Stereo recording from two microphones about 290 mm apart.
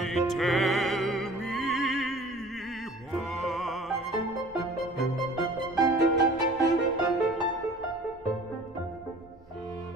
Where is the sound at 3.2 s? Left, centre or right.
Centre.